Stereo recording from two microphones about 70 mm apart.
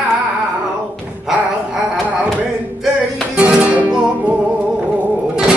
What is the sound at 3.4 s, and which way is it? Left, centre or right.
Music, centre.